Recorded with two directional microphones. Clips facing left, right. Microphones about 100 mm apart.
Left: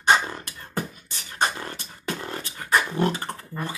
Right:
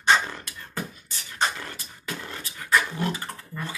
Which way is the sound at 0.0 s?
15° left (ahead or behind).